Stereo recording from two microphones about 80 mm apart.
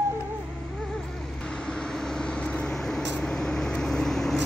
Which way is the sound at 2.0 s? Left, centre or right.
Centre.